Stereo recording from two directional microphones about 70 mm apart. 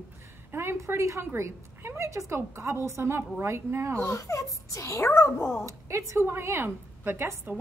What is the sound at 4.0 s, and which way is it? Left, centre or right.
A child's voice, left.